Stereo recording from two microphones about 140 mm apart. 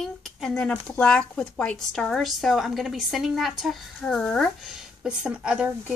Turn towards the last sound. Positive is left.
turn(degrees=-5)  # may be behind; listen again after turning